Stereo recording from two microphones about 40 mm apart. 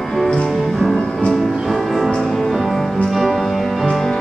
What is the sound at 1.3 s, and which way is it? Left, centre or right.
Music, centre.